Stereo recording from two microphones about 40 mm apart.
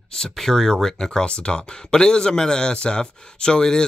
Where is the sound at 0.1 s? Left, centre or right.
Centre.